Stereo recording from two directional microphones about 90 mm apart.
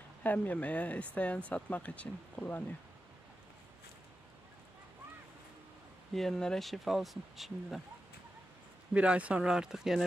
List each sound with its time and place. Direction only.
0.2 s speech: 20° left (ahead or behind)
6.1 s speech: 5° left (ahead or behind)
8.9 s speech: 15° right (ahead or behind)